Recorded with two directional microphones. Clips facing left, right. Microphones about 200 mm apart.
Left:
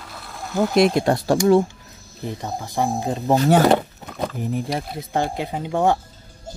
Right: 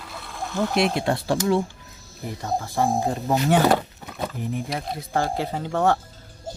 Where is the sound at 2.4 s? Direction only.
15° left (ahead or behind).